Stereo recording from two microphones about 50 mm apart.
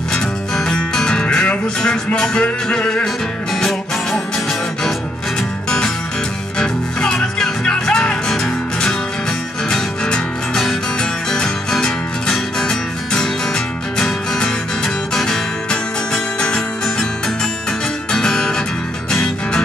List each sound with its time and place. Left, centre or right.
0.1 s music: centre
6.6 s music: centre
18.1 s music: centre